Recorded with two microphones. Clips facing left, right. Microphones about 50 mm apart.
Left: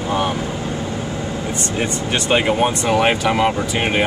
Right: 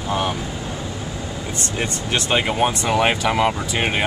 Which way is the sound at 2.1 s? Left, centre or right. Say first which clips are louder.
Left 3 dB; centre.